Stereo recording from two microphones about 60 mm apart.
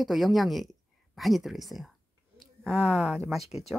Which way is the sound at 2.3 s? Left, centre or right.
Centre.